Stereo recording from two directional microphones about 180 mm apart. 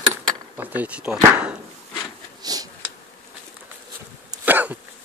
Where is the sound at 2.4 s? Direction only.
20° right (ahead or behind).